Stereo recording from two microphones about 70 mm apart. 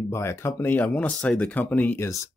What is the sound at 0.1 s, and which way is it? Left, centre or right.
Speech, left.